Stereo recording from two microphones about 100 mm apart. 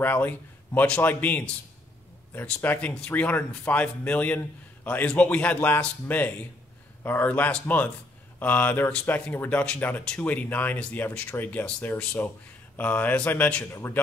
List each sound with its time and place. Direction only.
0.0 s speech: 20° left (ahead or behind)
2.4 s speech: 15° left (ahead or behind)